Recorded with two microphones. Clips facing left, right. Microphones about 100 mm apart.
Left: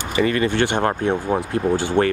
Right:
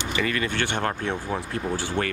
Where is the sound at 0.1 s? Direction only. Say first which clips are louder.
Left 8 dB; 30° left (ahead or behind).